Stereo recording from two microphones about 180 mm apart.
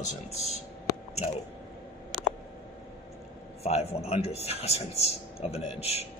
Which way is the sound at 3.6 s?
35° left (ahead or behind).